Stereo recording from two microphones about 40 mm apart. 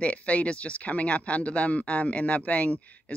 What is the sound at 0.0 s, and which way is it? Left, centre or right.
Speech, left.